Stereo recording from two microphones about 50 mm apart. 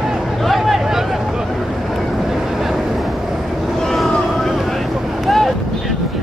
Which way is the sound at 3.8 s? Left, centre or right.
Centre.